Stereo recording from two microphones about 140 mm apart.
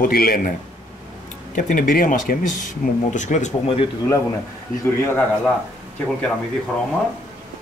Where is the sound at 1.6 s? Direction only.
70° left (ahead or behind).